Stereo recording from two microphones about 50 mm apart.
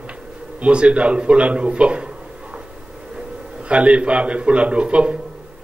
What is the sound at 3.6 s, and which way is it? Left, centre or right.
A man's voice, right.